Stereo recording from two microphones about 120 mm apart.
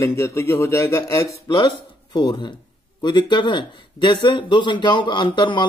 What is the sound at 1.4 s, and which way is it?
Speech, 40° left (ahead or behind).